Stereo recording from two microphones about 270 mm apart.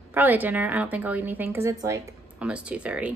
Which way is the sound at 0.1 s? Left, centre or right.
Centre.